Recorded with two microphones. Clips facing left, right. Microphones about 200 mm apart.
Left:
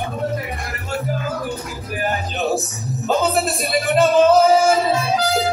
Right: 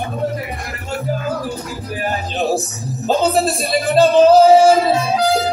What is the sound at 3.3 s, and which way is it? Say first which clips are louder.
Music: right 3 dB; 30° right (ahead or behind).